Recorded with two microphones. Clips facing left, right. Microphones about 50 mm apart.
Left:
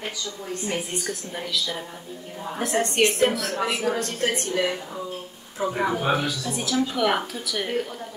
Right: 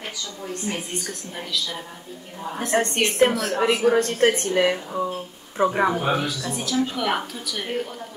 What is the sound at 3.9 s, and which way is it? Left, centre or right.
A woman's voice, right.